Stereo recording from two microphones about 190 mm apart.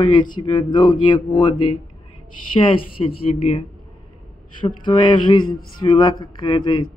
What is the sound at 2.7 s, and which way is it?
Speech, 25° left (ahead or behind).